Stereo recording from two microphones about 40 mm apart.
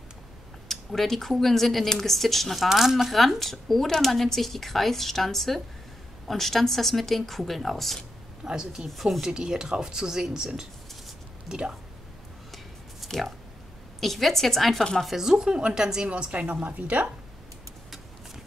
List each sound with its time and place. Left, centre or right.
0.7 s speech: centre
8.5 s speech: centre
8.8 s speech: centre
9.2 s speech: centre
13.0 s a sound: centre
13.9 s speech: centre
15.2 s speech: centre
16.1 s a woman's voice: right